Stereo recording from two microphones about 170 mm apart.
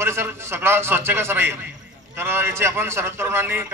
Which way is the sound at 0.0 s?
15° right (ahead or behind).